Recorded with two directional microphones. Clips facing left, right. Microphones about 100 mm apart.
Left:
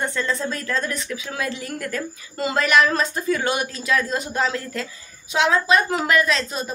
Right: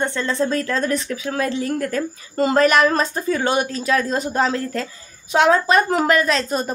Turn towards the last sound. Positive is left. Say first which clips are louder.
# right 3 dB
turn(degrees=-45)  # may be behind; listen again after turning